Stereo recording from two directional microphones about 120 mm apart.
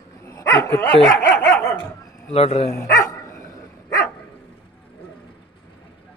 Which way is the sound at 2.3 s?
60° left (ahead or behind).